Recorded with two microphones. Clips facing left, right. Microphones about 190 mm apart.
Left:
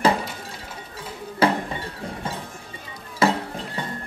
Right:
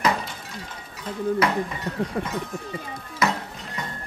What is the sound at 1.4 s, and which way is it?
Speech, 30° left (ahead or behind).